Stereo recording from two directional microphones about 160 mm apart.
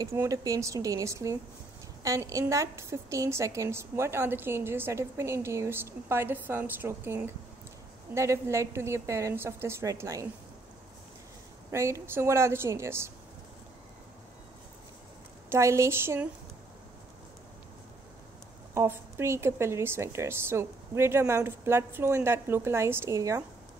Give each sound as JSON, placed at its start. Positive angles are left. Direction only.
{"t": 0.0, "sound": "a woman's voice", "side_deg": -20}
{"t": 11.7, "sound": "a woman's voice", "side_deg": -15}
{"t": 15.5, "sound": "a woman's voice", "side_deg": -20}
{"t": 18.8, "sound": "a woman's voice", "side_deg": -15}